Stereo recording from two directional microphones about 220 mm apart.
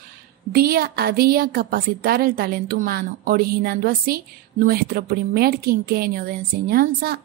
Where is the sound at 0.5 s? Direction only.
40° right (ahead or behind).